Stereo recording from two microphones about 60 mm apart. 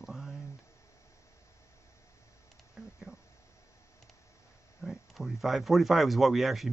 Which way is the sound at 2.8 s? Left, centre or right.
Centre.